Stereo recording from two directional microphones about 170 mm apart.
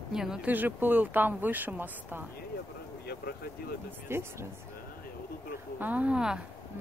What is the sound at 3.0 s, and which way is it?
Speech, 70° left (ahead or behind).